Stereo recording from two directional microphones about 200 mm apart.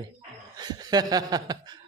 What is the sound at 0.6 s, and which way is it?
Chuckle, 20° right (ahead or behind).